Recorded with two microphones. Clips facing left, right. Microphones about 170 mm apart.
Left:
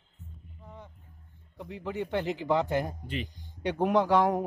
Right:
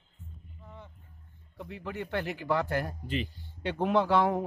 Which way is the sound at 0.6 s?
15° left (ahead or behind).